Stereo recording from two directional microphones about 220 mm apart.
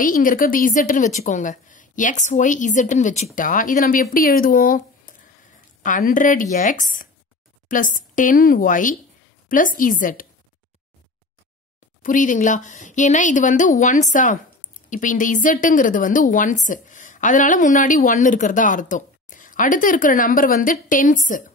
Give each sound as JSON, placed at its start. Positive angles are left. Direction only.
{"t": 0.0, "sound": "a woman's voice", "side_deg": 40}
{"t": 12.0, "sound": "a woman's voice", "side_deg": 35}